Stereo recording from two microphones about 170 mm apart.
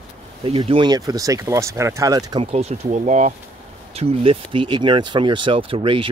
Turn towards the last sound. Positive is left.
turn(degrees=-30)  # may be behind; listen again after turning